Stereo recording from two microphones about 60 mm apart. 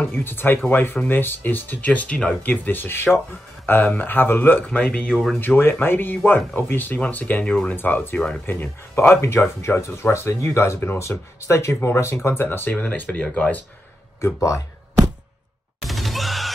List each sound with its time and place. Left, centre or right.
0.1 s speech: left
4.7 s speech: left
5.1 s speech: centre
5.4 s speech: left; by 7.7 s centre
7.7 s speech: left
15.8 s music: centre